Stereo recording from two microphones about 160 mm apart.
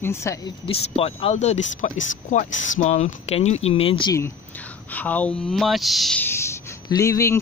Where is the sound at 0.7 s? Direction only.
35° left (ahead or behind).